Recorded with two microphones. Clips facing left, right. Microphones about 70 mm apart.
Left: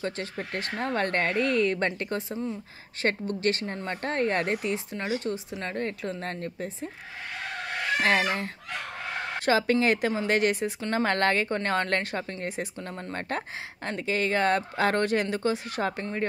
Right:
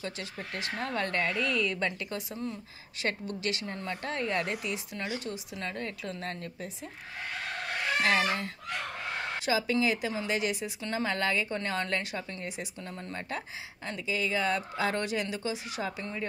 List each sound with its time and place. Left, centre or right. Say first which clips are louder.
0.0 s speech: left 6 dB; left
8.0 s speech: left 3 dB; left
9.4 s speech: left 5 dB; left
13.3 s speech: left 5 dB; left